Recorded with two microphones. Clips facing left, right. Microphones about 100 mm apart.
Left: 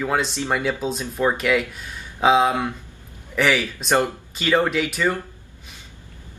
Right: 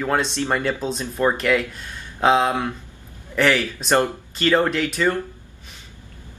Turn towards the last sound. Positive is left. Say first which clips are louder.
# right 1 dB
turn(degrees=5)  # may be behind; listen again after turning